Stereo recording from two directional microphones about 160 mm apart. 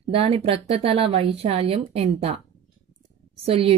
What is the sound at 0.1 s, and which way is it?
Speech, 40° right (ahead or behind).